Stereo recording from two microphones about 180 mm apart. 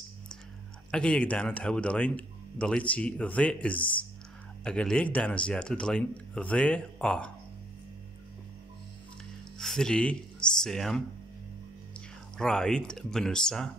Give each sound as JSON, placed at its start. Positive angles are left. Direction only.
{"t": 0.9, "sound": "speech", "side_deg": 5}
{"t": 9.6, "sound": "speech", "side_deg": 5}
{"t": 12.4, "sound": "speech", "side_deg": 5}